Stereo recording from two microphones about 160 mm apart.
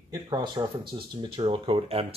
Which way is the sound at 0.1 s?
25° right (ahead or behind).